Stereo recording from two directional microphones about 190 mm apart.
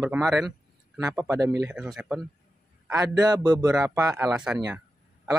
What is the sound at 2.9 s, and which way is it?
A man's voice, 20° right (ahead or behind).